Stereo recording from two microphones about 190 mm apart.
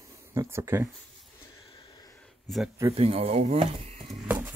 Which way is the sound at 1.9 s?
20° left (ahead or behind).